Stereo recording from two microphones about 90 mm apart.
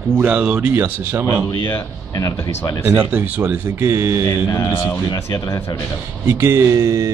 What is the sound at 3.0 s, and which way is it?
Speech, 20° right (ahead or behind).